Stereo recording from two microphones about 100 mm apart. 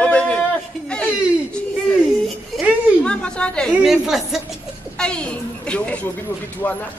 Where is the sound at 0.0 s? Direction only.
10° left (ahead or behind).